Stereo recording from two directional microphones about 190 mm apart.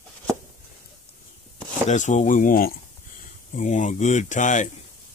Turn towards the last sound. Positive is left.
turn(degrees=40)  # may be behind; listen again after turning